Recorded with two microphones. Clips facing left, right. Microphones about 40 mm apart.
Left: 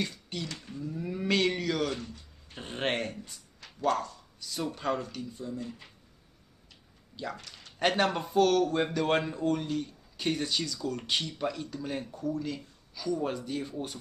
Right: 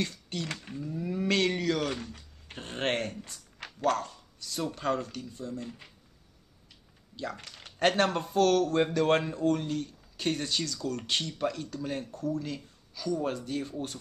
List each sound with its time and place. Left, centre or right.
0.0 s speech: centre
0.8 s a sound: centre
1.9 s speech: right
2.6 s speech: centre
3.5 s a sound: right
4.4 s speech: centre
7.8 s speech: centre